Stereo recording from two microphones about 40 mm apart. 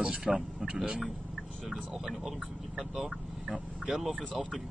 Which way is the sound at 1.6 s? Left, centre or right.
Centre.